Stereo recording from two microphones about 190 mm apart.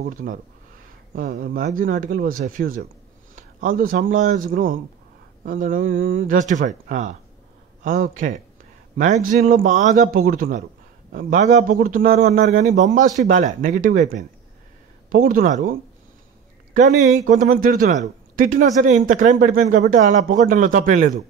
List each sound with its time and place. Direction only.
0.0 s a man's voice: 45° right (ahead or behind)